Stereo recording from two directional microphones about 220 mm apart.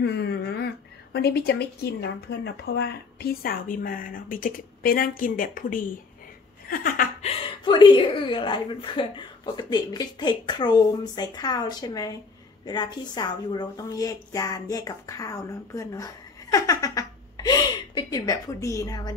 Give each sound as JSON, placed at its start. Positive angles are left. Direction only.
{"t": 0.0, "sound": "a woman's voice", "side_deg": 50}